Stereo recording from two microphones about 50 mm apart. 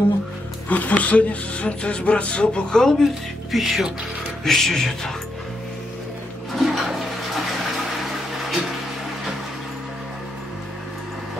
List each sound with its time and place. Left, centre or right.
0.7 s speech: left; by 3.1 s centre
3.5 s speech: centre
6.5 s toilet flush: centre